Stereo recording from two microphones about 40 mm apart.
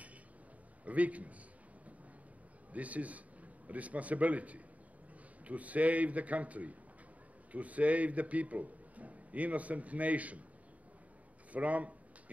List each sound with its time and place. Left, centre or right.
0.8 s a man's voice: right
2.7 s a man's voice: right
11.5 s a man's voice: right